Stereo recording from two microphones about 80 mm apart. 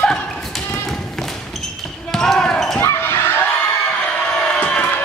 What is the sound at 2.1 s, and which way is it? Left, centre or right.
Basketball bounce, centre.